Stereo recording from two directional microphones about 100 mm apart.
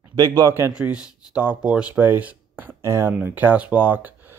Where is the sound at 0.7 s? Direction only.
10° right (ahead or behind).